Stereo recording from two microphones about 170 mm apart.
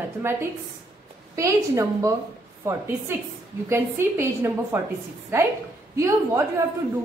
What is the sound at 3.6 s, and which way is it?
A woman's voice, 15° right (ahead or behind).